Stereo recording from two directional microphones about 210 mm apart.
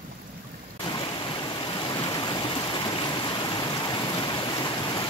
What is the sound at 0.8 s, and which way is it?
Stream, 20° left (ahead or behind).